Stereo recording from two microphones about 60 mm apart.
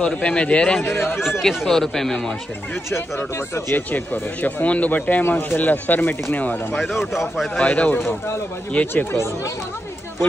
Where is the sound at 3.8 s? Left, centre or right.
Left.